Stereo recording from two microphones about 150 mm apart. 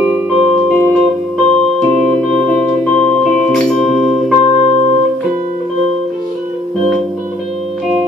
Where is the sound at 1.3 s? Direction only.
5° left (ahead or behind).